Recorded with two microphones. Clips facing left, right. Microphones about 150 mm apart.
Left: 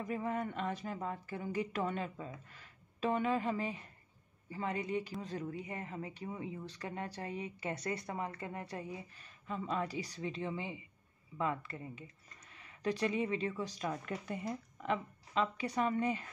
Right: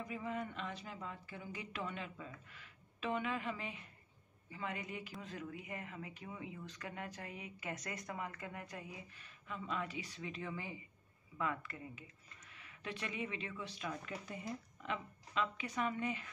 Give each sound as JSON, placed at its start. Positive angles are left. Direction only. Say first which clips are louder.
{"t": 0.0, "sound": "speech", "louder": "left 5 dB", "side_deg": 50}
{"t": 15.3, "sound": "speech", "louder": "left 5 dB", "side_deg": 35}